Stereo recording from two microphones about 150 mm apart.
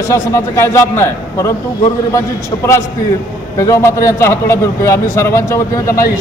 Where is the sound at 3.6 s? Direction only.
20° left (ahead or behind).